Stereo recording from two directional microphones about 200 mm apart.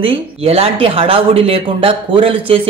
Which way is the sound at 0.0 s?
30° right (ahead or behind).